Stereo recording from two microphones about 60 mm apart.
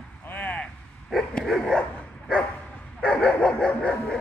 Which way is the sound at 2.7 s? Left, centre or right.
Left.